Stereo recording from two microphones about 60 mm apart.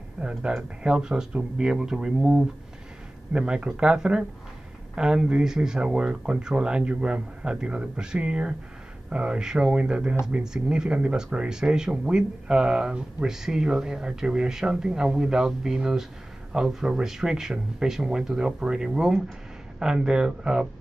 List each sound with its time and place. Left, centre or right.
0.2 s speech: centre